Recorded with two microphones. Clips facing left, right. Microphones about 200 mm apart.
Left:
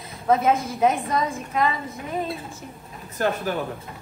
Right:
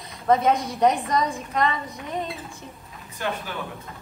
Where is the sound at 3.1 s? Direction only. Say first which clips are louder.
Left 6 dB; 45° left (ahead or behind).